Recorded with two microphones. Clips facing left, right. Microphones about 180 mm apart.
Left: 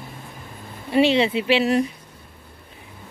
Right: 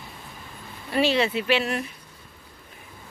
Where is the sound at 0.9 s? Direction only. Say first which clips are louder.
Left 5 dB; 25° left (ahead or behind).